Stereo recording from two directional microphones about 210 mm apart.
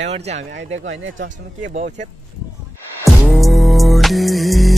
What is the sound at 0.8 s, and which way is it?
Speech, 65° right (ahead or behind).